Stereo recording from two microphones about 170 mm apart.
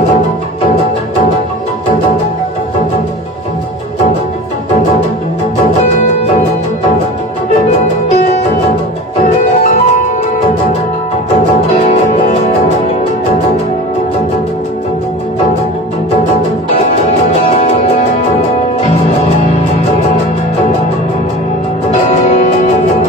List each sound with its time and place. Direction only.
9.5 s music: 45° left (ahead or behind)
17.5 s music: 40° left (ahead or behind)